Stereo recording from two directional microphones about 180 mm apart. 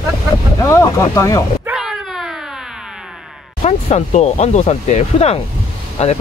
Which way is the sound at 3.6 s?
35° left (ahead or behind).